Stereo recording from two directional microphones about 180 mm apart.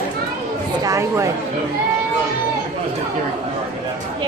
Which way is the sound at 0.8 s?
15° right (ahead or behind).